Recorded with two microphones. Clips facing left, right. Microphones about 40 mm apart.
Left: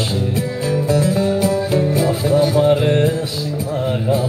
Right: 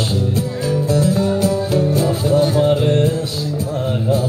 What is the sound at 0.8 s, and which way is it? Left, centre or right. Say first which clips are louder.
Music: even; left.